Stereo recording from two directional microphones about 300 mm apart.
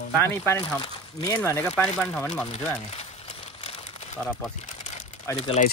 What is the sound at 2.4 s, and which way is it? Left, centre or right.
Crumpling, centre.